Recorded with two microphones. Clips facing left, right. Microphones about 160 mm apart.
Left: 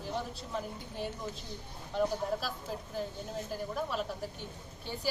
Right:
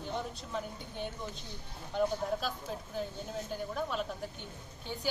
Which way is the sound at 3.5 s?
5° left (ahead or behind).